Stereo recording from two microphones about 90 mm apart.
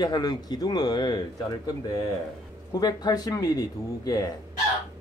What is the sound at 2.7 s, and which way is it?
Speech, 45° left (ahead or behind).